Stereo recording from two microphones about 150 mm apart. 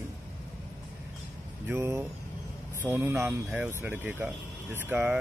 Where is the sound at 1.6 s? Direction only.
15° right (ahead or behind).